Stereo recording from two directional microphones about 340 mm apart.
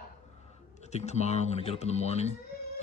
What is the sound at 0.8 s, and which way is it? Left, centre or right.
Speech, centre.